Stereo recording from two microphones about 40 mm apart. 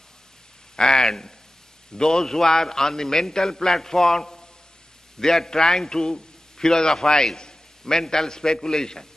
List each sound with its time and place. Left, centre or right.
0.7 s a man's voice: centre